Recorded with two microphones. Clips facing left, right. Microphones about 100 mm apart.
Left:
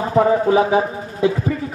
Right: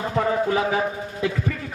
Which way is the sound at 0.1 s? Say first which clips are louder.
Left 8 dB; 25° left (ahead or behind).